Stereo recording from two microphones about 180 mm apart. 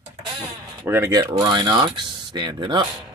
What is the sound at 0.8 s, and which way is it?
Speech, 15° right (ahead or behind).